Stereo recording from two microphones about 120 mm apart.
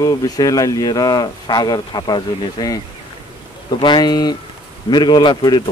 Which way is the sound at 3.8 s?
35° left (ahead or behind).